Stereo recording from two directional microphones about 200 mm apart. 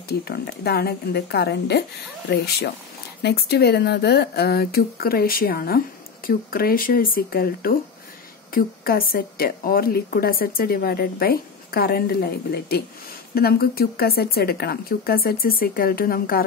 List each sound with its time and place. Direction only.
0.2 s speech: 50° left (ahead or behind)